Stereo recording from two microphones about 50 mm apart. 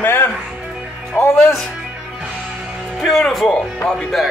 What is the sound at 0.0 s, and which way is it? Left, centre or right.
Music, left.